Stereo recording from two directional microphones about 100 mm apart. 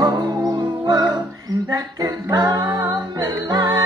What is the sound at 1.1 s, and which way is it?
Singing, 40° right (ahead or behind).